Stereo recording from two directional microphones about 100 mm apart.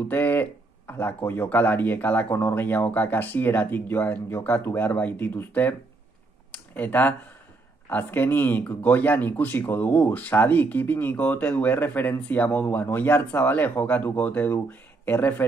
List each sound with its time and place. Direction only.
0.1 s speech: 20° left (ahead or behind)